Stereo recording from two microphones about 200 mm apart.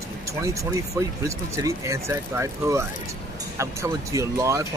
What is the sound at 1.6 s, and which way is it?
Speech, 15° right (ahead or behind).